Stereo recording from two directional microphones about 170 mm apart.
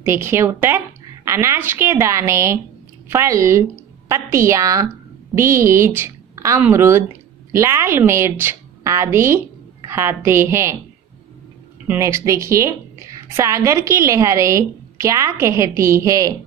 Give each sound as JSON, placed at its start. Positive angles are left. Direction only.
{"t": 0.0, "sound": "a woman's voice", "side_deg": -15}
{"t": 11.9, "sound": "a woman's voice", "side_deg": -15}